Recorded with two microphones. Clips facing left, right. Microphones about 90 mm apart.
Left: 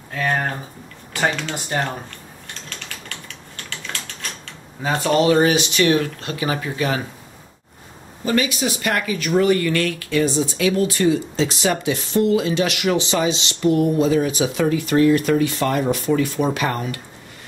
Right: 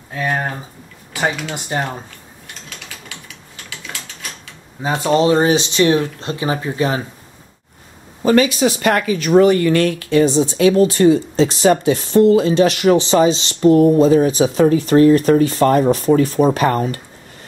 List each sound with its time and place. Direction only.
0.1 s speech: 15° right (ahead or behind)
1.5 s typing: 10° right (ahead or behind)
4.8 s speech: 10° right (ahead or behind)
5.1 s speech: 25° right (ahead or behind)
8.2 s speech: 60° right (ahead or behind)
8.6 s speech: 45° right (ahead or behind)
9.0 s speech: 30° right (ahead or behind)